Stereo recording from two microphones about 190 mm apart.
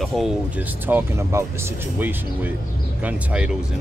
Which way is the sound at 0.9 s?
10° right (ahead or behind).